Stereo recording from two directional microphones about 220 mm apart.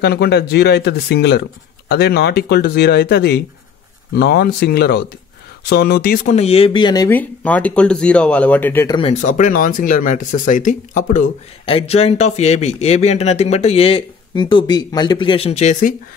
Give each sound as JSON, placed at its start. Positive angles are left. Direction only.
{"t": 0.0, "sound": "speech", "side_deg": 45}
{"t": 9.2, "sound": "speech", "side_deg": 35}